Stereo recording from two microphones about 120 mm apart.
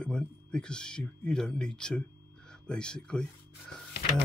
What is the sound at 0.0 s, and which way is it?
Speech, 5° left (ahead or behind).